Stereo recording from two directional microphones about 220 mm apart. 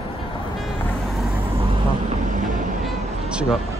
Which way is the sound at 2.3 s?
35° right (ahead or behind).